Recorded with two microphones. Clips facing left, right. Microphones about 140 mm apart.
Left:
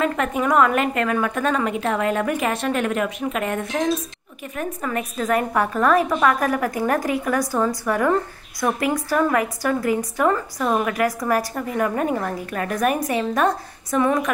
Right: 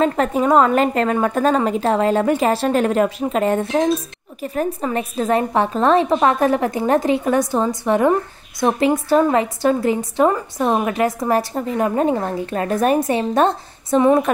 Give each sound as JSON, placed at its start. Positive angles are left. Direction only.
{"t": 0.0, "sound": "a woman's voice", "side_deg": -30}